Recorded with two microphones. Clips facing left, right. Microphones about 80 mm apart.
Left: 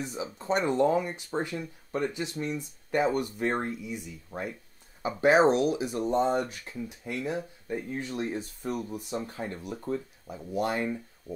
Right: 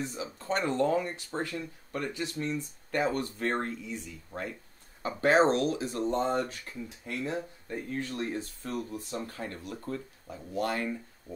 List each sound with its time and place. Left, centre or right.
0.0 s speech: centre